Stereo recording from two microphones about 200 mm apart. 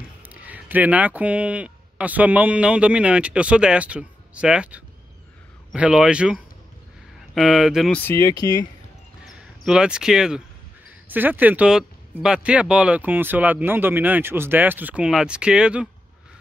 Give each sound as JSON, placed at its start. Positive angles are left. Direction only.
{"t": 0.2, "sound": "a man's voice", "side_deg": -10}
{"t": 8.0, "sound": "speech", "side_deg": 15}
{"t": 9.2, "sound": "speech", "side_deg": -5}